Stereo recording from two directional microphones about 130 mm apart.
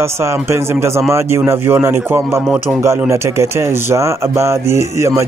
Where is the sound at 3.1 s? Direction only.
20° right (ahead or behind).